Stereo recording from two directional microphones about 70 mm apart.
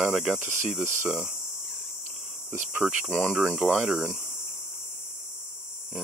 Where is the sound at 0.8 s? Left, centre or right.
Right.